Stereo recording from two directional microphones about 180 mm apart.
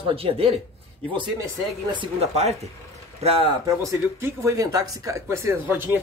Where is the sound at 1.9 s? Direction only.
30° right (ahead or behind).